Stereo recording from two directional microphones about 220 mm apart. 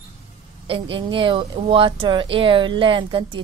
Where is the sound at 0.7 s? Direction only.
25° right (ahead or behind).